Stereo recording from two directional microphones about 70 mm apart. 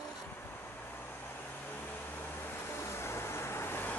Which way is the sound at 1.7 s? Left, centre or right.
Left.